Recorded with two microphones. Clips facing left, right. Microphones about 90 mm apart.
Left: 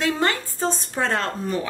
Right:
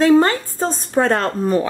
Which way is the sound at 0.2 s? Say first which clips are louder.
Right 5 dB; 40° right (ahead or behind).